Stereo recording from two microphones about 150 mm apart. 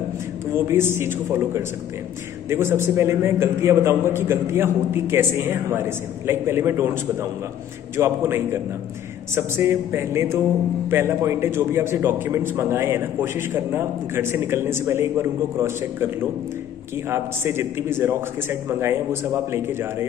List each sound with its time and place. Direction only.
0.7 s a man's voice: 15° right (ahead or behind)
8.0 s a man's voice: 20° right (ahead or behind)
9.3 s a man's voice: 15° right (ahead or behind)